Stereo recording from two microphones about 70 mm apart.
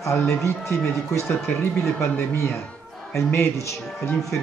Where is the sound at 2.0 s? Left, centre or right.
Left.